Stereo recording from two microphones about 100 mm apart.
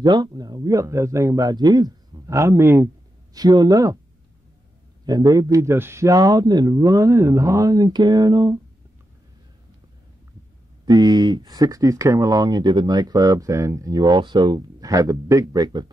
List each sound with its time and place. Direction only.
0.0 s speech: 45° right (ahead or behind); by 2.9 s 25° right (ahead or behind)
3.3 s speech: 40° right (ahead or behind)
5.0 s speech: 40° right (ahead or behind); by 6.0 s 25° right (ahead or behind)
6.0 s speech: 40° right (ahead or behind)
10.9 s speech: 45° right (ahead or behind)